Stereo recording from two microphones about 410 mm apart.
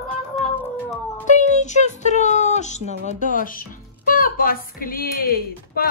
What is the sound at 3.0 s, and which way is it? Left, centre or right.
A woman's voice, centre.